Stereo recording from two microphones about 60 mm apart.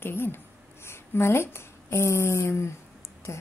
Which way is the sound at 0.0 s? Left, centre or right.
Left.